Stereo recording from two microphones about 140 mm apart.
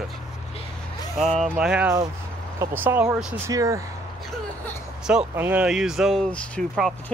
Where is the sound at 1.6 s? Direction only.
10° right (ahead or behind).